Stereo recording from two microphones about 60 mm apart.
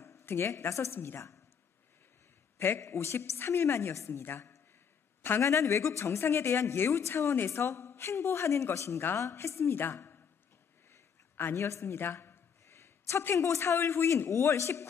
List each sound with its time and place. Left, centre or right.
0.2 s speech: left
0.9 s a woman's voice: left
2.8 s speech: left
5.4 s speech: left
6.9 s a woman's voice: left
10.9 s a sound: left
13.4 s speech: left